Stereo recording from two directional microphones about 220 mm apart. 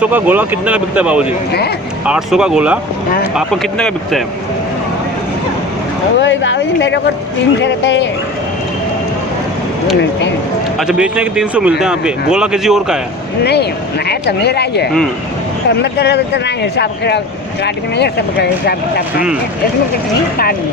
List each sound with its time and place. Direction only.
0.0 s speech: 10° right (ahead or behind)
6.1 s speech: 55° left (ahead or behind)
10.8 s speech: 5° right (ahead or behind)
13.4 s speech: 50° left (ahead or behind)